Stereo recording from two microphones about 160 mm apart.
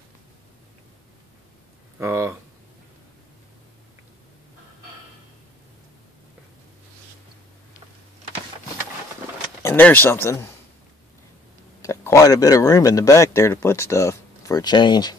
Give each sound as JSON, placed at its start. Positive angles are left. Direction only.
{"t": 2.0, "sound": "speech", "side_deg": -15}
{"t": 9.6, "sound": "speech", "side_deg": 15}
{"t": 11.8, "sound": "speech", "side_deg": 20}